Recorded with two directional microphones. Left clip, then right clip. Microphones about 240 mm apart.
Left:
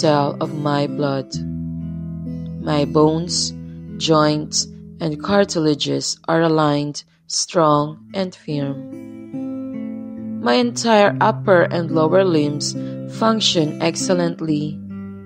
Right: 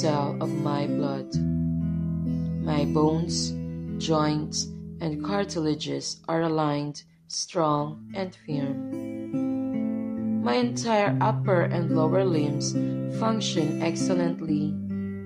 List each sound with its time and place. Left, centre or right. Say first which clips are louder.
0.0 s speech: left 9 dB; left
2.6 s speech: left 9 dB; left
9.3 s music: left 1 dB; centre
10.4 s speech: left 9 dB; left